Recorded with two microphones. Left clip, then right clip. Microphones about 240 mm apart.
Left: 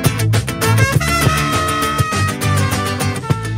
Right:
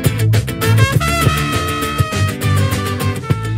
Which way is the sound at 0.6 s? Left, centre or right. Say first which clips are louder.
Even; centre.